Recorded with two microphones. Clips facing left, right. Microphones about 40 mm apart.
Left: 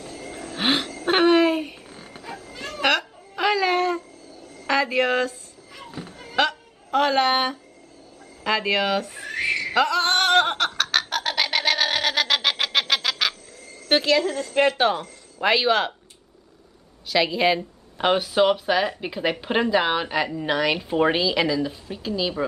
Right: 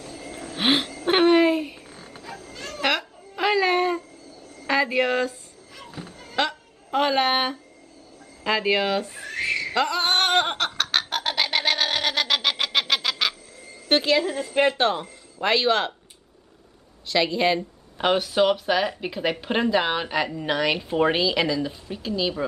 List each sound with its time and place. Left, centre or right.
0.0 s a sound: centre
5.8 s a sound: centre
6.9 s a woman's voice: centre
9.1 s a sound: centre
9.8 s music: centre
13.6 s cricket: centre
13.8 s a woman's voice: centre
15.4 s speech: centre
17.1 s speech: centre